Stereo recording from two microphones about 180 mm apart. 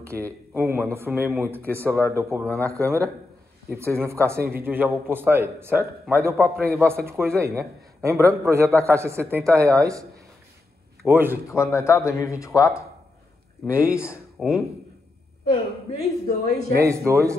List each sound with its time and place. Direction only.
0.1 s a man's voice: 60° right (ahead or behind)
0.6 s a man's voice: 10° right (ahead or behind)
11.4 s speech: 15° left (ahead or behind)
13.7 s a man's voice: 10° right (ahead or behind)
16.0 s a man's voice: 60° right (ahead or behind)
16.8 s a man's voice: 15° right (ahead or behind)